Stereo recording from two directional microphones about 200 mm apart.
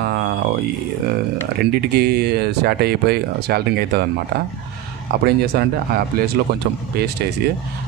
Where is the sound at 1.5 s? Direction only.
50° right (ahead or behind).